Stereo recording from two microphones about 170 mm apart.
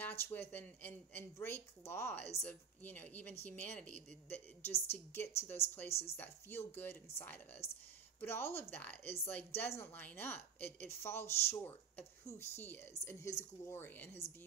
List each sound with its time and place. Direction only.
0.0 s a woman's voice: 15° left (ahead or behind)